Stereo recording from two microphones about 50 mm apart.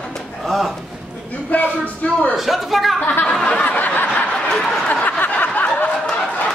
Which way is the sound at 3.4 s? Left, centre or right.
Left.